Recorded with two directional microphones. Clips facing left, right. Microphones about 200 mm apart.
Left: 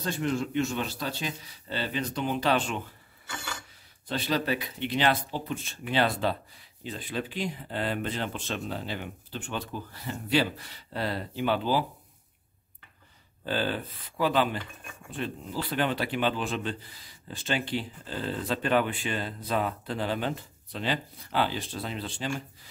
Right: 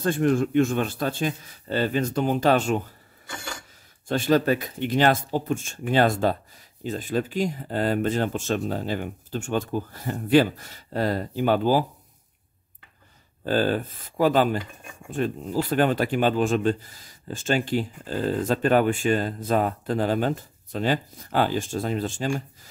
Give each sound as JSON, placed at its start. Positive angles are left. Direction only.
{"t": 0.0, "sound": "speech", "side_deg": -50}
{"t": 4.1, "sound": "speech", "side_deg": -50}
{"t": 13.4, "sound": "speech", "side_deg": -45}